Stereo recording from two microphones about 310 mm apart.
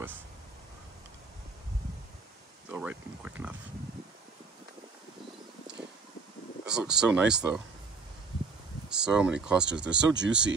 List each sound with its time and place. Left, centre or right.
2.7 s a sound: centre
6.6 s speech: centre
8.8 s speech: centre
9.9 s speech: right